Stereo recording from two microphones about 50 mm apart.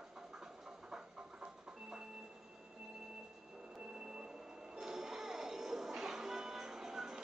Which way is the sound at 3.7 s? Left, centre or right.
Centre.